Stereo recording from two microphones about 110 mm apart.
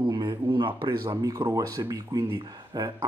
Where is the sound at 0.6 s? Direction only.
50° right (ahead or behind).